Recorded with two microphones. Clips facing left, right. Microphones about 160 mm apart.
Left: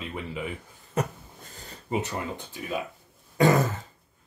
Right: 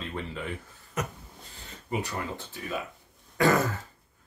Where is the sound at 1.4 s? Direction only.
40° left (ahead or behind).